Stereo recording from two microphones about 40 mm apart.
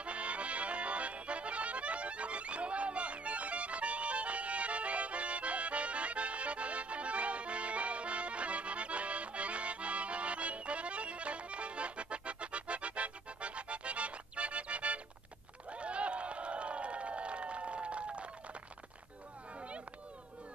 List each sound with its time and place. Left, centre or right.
0.0 s accordion: right
15.7 s crowd: right